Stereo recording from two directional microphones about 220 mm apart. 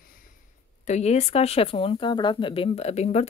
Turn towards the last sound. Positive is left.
turn(degrees=30)  # may be behind; listen again after turning